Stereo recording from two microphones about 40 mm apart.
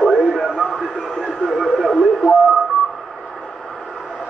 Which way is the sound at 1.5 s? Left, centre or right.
Centre.